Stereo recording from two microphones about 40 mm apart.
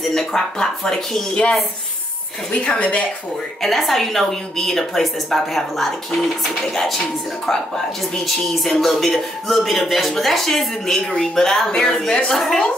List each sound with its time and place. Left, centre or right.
0.1 s speech: centre
2.5 s a woman's voice: left
3.6 s a woman's voice: centre